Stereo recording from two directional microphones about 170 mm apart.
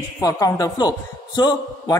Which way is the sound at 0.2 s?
20° left (ahead or behind).